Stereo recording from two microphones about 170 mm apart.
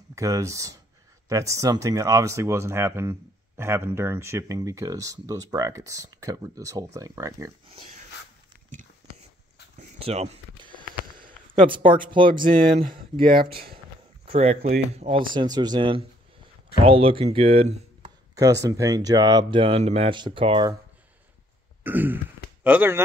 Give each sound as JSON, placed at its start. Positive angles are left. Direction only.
{"t": 0.1, "sound": "speech", "side_deg": -20}
{"t": 7.7, "sound": "speech", "side_deg": -40}
{"t": 9.8, "sound": "a sound", "side_deg": -35}
{"t": 10.8, "sound": "a sound", "side_deg": -55}
{"t": 11.9, "sound": "speech", "side_deg": -30}
{"t": 14.2, "sound": "speech", "side_deg": -35}
{"t": 15.3, "sound": "speech", "side_deg": -25}
{"t": 18.3, "sound": "a sound", "side_deg": -20}
{"t": 18.8, "sound": "speech", "side_deg": -20}
{"t": 21.8, "sound": "speech", "side_deg": -10}